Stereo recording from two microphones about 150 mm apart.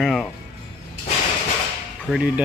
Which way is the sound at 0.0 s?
Centre (ahead or behind).